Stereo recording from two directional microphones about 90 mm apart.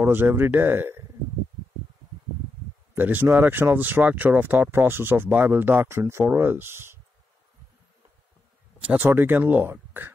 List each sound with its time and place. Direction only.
0.0 s speech: 25° right (ahead or behind)
2.9 s speech: 20° right (ahead or behind)
8.8 s speech: 20° right (ahead or behind)